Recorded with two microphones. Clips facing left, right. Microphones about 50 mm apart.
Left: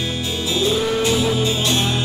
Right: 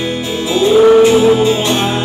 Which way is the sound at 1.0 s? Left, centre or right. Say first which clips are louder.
Right 10 dB; centre.